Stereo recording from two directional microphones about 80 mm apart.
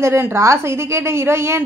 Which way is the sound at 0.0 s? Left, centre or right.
Right.